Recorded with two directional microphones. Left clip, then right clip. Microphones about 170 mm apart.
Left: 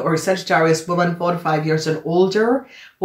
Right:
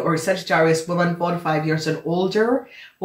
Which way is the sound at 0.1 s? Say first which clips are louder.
Left 3 dB; 30° left (ahead or behind).